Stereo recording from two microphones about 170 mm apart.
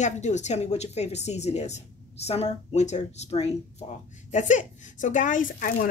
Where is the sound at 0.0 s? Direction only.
45° left (ahead or behind).